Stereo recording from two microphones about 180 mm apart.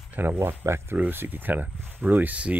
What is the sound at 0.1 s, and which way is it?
Speech, 10° right (ahead or behind).